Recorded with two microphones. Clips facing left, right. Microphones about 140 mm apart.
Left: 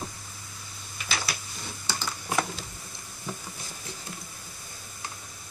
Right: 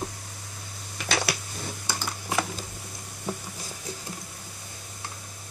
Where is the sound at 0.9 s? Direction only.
70° right (ahead or behind).